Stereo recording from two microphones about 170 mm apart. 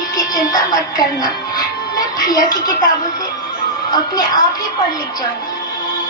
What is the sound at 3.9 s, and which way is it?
Music, 25° left (ahead or behind).